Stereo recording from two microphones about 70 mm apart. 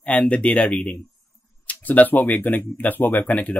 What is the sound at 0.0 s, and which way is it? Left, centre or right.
Speech, centre.